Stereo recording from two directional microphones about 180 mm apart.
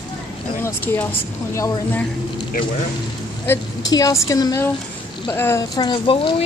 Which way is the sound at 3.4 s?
15° left (ahead or behind).